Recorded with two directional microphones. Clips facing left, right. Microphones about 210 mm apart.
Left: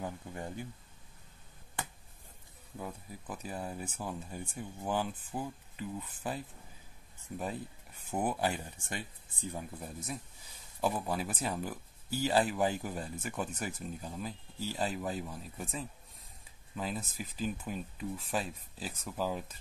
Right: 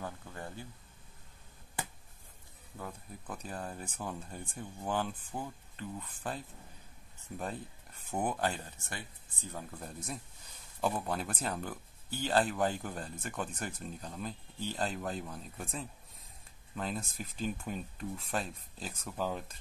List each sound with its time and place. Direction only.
0.0 s a sound: 15° left (ahead or behind)
2.8 s speech: 10° left (ahead or behind)
8.1 s speech: 5° left (ahead or behind)